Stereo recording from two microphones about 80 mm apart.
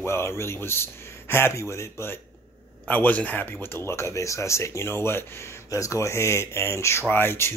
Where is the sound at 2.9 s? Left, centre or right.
Left.